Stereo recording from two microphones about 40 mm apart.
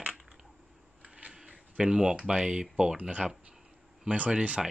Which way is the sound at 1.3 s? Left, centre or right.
Centre.